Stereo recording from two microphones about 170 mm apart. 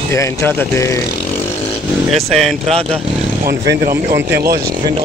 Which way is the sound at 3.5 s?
65° right (ahead or behind).